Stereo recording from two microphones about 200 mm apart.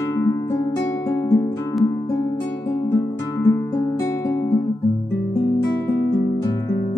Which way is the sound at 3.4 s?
15° left (ahead or behind).